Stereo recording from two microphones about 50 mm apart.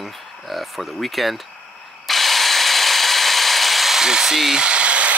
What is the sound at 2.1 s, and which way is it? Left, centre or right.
Tools, centre.